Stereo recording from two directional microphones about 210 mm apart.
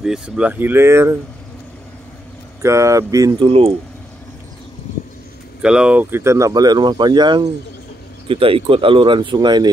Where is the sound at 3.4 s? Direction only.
25° right (ahead or behind).